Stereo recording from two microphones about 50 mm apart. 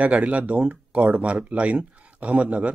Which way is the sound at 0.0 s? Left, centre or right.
Right.